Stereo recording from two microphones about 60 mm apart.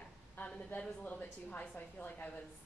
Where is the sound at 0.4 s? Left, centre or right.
Left.